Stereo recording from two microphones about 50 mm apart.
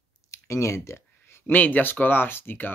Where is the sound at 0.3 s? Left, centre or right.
Left.